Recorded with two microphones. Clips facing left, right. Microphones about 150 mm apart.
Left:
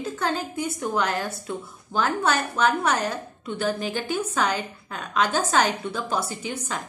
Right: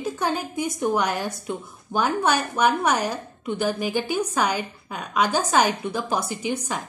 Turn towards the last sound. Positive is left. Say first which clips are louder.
# right 4 dB
turn(degrees=-15)  # may be behind; listen again after turning